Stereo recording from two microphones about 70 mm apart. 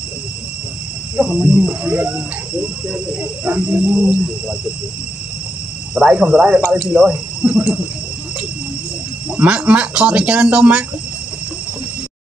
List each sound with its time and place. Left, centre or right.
1.1 s speech: centre
5.9 s speech: centre
9.3 s speech: centre